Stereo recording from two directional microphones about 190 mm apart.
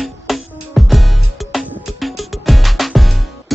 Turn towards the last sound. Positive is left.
turn(degrees=0)  # may be behind; listen again after turning